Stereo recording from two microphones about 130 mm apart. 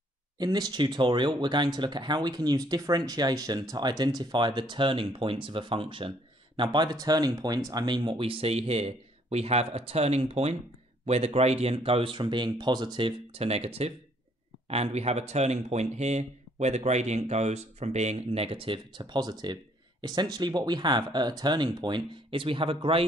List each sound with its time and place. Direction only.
0.4 s speech: 30° right (ahead or behind)